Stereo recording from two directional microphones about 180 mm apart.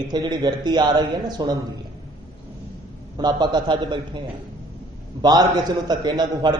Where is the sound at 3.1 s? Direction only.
25° right (ahead or behind).